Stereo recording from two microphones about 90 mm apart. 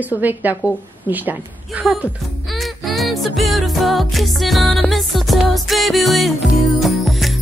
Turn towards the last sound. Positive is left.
turn(degrees=0)  # may be behind; listen again after turning